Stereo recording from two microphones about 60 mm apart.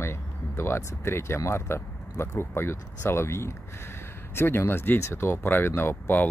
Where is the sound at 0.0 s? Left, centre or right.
Left.